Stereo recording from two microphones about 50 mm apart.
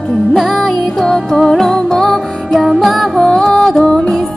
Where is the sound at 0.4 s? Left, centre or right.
Centre.